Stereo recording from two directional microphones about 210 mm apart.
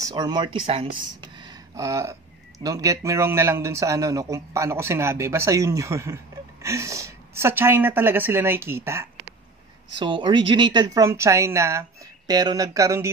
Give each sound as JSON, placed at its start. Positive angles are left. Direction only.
{"t": 0.0, "sound": "a man's voice", "side_deg": -20}
{"t": 9.9, "sound": "a man's voice", "side_deg": -20}